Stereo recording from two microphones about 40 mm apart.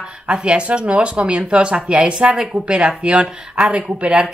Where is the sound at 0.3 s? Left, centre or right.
Right.